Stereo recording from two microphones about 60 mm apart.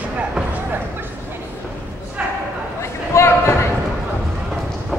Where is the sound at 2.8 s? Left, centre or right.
Left.